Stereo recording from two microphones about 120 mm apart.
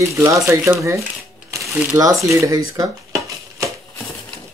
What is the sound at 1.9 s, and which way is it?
Speech, 25° right (ahead or behind).